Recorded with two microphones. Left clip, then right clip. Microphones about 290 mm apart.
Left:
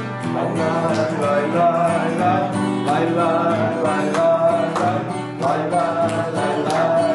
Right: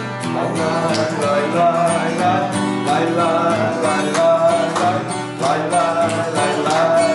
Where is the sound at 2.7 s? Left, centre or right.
Centre.